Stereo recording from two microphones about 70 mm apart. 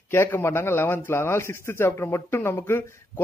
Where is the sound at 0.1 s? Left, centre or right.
Left.